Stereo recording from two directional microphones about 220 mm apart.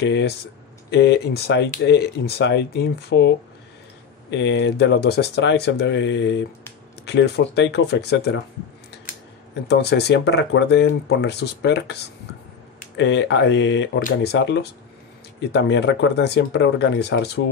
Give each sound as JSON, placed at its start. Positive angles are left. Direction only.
{"t": 0.0, "sound": "speech", "side_deg": 50}
{"t": 9.7, "sound": "speech", "side_deg": 50}